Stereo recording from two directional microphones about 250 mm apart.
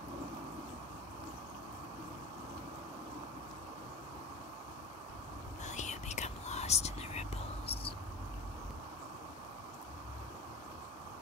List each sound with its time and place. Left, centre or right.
5.7 s whispering: left